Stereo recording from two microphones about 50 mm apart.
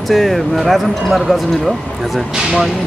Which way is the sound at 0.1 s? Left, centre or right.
Centre.